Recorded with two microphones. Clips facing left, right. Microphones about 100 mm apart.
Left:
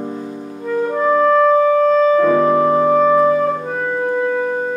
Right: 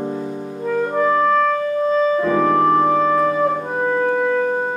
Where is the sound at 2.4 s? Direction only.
10° left (ahead or behind).